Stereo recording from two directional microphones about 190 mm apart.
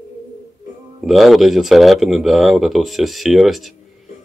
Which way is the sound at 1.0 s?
Centre (ahead or behind).